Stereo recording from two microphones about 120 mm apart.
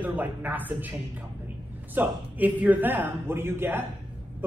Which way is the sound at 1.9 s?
15° right (ahead or behind).